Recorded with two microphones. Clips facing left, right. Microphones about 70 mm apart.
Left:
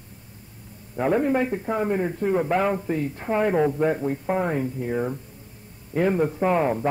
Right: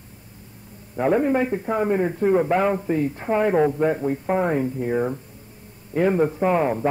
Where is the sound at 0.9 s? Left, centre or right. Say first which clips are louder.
Right 2 dB; centre.